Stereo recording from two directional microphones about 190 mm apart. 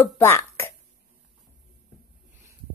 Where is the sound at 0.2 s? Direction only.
15° left (ahead or behind).